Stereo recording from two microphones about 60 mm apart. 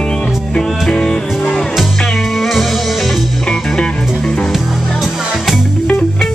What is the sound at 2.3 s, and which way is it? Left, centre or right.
Music, centre.